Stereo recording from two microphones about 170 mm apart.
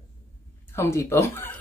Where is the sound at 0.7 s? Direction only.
15° left (ahead or behind).